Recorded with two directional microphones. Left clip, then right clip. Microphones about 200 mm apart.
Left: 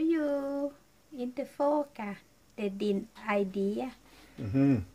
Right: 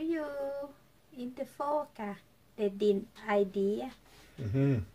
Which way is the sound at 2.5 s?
30° left (ahead or behind).